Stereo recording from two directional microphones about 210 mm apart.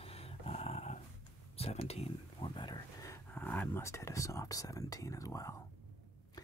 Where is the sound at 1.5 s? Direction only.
30° left (ahead or behind).